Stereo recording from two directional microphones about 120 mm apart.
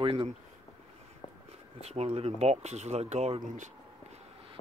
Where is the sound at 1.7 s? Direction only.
60° right (ahead or behind); by 3.7 s 75° right (ahead or behind).